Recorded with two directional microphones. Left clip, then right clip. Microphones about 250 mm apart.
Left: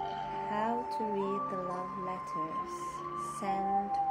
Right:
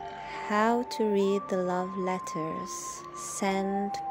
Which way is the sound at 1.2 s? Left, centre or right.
Right.